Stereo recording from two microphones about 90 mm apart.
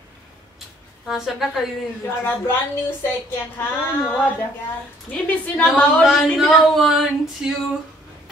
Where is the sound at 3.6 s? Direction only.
25° left (ahead or behind).